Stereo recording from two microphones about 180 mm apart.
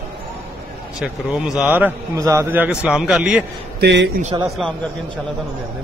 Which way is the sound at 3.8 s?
80° right.